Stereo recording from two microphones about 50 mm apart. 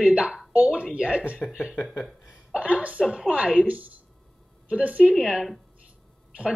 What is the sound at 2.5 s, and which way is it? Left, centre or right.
A woman's voice, right.